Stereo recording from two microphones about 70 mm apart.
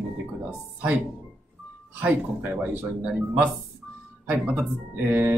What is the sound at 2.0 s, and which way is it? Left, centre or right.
Speech, right.